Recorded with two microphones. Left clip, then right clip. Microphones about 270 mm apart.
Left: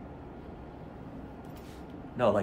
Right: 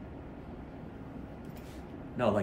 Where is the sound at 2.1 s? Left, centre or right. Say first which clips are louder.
Left 3 dB; centre.